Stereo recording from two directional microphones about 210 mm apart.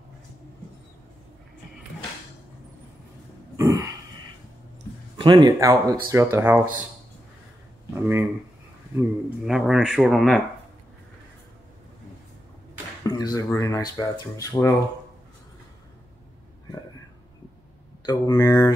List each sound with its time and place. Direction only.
3.5 s a sound: 15° right (ahead or behind)
5.1 s speech: 20° right (ahead or behind)
7.9 s speech: 10° right (ahead or behind)
9.5 s speech: centre (ahead or behind)
13.0 s speech: 20° left (ahead or behind)
18.0 s speech: 20° left (ahead or behind)